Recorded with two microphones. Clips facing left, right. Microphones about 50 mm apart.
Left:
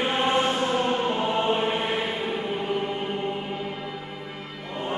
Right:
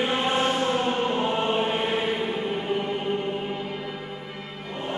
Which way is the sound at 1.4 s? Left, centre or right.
Centre.